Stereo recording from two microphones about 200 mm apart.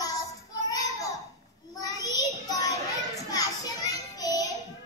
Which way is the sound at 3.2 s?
20° left (ahead or behind).